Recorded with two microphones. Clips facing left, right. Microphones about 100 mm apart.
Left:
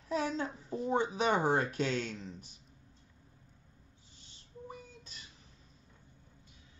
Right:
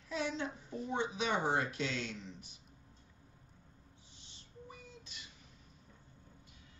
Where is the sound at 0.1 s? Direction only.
40° left (ahead or behind).